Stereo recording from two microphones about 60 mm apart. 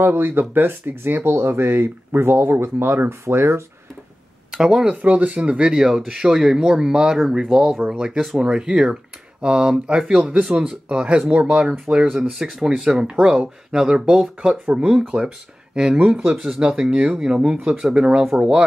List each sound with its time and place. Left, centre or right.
0.0 s speech: right
4.6 s speech: centre
4.8 s speech: right
12.1 s speech: centre; by 16.3 s right
16.4 s speech: centre